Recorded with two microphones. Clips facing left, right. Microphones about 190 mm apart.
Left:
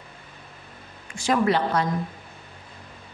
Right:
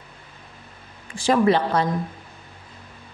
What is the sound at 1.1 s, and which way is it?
Speech, 30° right (ahead or behind).